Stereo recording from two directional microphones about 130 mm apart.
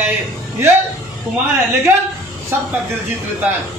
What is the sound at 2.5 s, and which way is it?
Speech, 15° right (ahead or behind).